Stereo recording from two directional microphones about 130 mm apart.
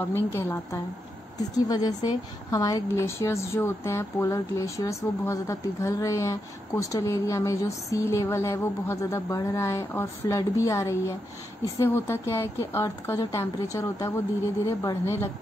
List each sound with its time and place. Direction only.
0.0 s a woman's voice: 15° left (ahead or behind)
1.5 s speech: 30° left (ahead or behind)